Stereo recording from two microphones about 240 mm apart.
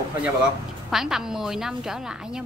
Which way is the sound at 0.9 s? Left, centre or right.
Centre.